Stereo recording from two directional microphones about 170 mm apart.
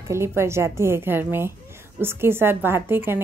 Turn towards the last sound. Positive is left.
turn(degrees=-15)  # may be behind; listen again after turning